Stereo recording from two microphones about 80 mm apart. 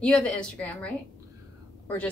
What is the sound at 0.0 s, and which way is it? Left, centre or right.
A woman's voice, centre.